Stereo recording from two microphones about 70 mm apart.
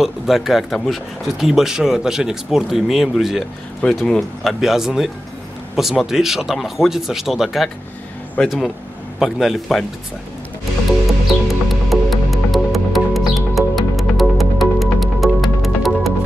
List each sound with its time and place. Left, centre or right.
0.0 s speech: centre
11.4 s music: centre